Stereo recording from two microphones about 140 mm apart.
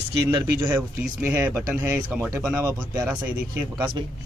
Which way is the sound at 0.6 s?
15° right (ahead or behind).